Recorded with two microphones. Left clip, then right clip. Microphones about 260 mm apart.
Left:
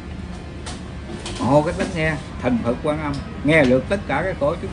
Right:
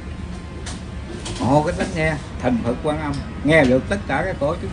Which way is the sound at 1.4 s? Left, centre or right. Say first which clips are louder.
Left 1 dB; centre.